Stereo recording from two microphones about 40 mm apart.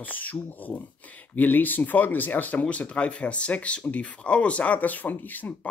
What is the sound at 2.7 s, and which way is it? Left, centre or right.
Speech, left.